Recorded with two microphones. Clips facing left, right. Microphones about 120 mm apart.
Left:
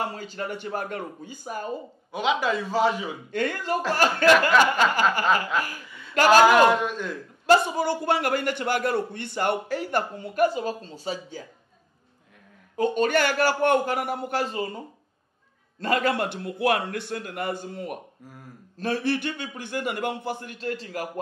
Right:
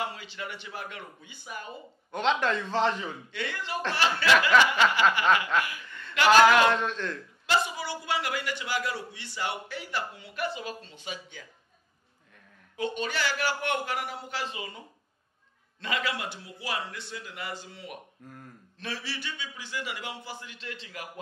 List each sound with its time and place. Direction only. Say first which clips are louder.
0.0 s a man's voice: left 5 dB; 45° left (ahead or behind)
2.1 s a man's voice: left 2 dB; 5° left (ahead or behind)
3.3 s a man's voice: left 13 dB; 45° left (ahead or behind)
5.1 s chuckle: left 1 dB; 40° left (ahead or behind)
5.9 s a sound: even; 10° left (ahead or behind)
6.1 s a man's voice: left 3 dB; 40° left (ahead or behind)
6.7 s a man's voice: left 4 dB; 10° left (ahead or behind)
7.4 s a man's voice: left 9 dB; 50° left (ahead or behind)
12.7 s a man's voice: left 9 dB; 45° left (ahead or behind)
18.2 s a man's voice: left 1 dB; 5° left (ahead or behind)
18.8 s a man's voice: left 12 dB; 50° left (ahead or behind)